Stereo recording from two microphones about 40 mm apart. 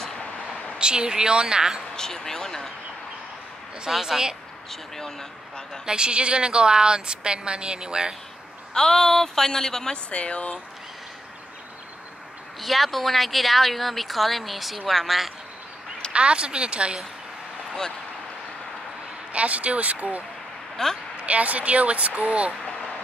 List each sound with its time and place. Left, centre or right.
0.7 s a woman's voice: right
2.0 s a woman's voice: centre
3.9 s speech: centre
4.6 s a woman's voice: centre
5.9 s a woman's voice: right
8.7 s a woman's voice: centre
10.0 s speech: left
12.5 s a woman's voice: centre
16.1 s a woman's voice: right
19.3 s speech: right
20.7 s speech: centre
21.3 s speech: right